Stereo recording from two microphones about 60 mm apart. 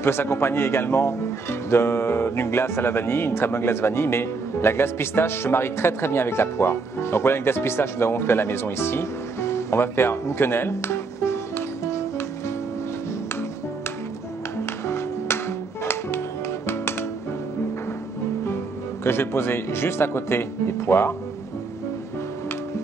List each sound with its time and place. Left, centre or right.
0.0 s speech: left
14.9 s music: left
19.0 s speech: left